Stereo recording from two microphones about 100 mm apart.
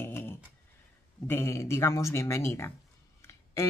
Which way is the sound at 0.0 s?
25° left (ahead or behind).